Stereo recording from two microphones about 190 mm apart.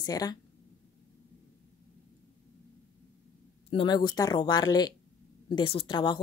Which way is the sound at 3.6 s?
25° left (ahead or behind).